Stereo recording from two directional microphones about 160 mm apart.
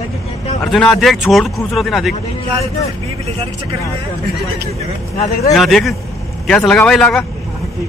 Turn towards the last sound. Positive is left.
turn(degrees=5)  # may be behind; listen again after turning